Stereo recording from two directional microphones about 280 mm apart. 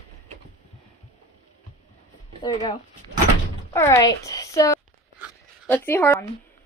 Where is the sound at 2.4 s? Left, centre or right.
Centre.